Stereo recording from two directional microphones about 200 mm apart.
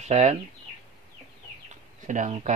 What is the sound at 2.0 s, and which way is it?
Speech, 40° right (ahead or behind).